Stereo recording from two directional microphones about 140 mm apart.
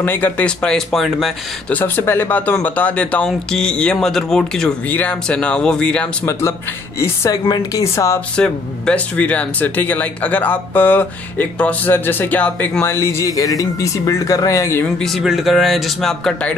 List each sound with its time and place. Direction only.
0.0 s speech: 15° left (ahead or behind)
1.7 s speech: 10° left (ahead or behind)
7.0 s a woman's voice: 25° left (ahead or behind)
8.4 s speech: 10° left (ahead or behind)
15.0 s speech: centre (ahead or behind)